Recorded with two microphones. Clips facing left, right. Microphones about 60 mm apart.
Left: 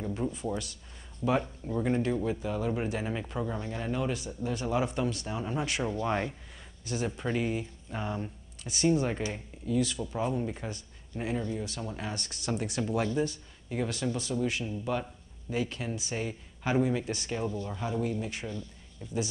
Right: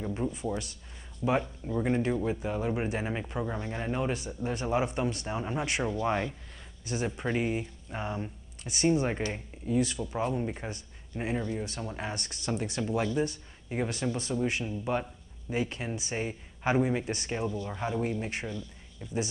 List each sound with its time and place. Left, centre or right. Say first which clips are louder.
0.2 s speech: right 1 dB; centre
3.5 s speech: right 1 dB; right
6.9 s speech: even; centre
7.2 s speech: right 2 dB; right
8.7 s speech: even; right
12.3 s speech: even; centre
13.0 s speech: even; right